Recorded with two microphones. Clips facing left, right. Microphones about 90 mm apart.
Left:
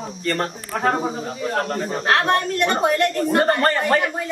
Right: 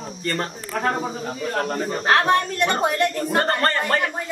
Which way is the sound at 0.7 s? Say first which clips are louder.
Left 3 dB; 20° left (ahead or behind).